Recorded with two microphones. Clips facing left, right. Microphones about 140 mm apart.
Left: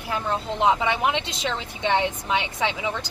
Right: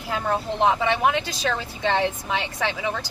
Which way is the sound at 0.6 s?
20° left (ahead or behind).